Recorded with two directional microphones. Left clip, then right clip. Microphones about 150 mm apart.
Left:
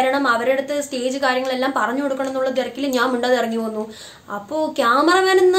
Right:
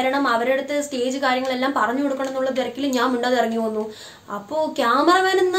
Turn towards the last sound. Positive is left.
turn(degrees=25)  # may be behind; listen again after turning